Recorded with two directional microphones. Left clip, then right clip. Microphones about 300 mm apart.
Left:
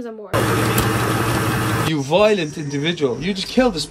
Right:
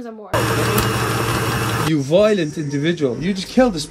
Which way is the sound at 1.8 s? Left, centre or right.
Centre.